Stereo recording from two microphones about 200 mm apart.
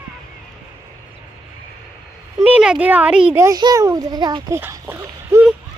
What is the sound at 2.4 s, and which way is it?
A child's voice, 5° right (ahead or behind).